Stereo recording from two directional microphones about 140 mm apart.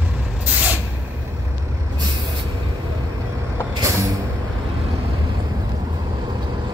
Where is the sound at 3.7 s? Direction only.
25° right (ahead or behind).